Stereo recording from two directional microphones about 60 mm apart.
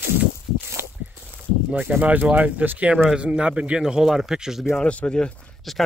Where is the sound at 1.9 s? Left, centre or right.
Right.